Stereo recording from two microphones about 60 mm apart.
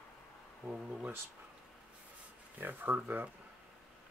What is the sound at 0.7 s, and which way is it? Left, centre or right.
Speech, centre.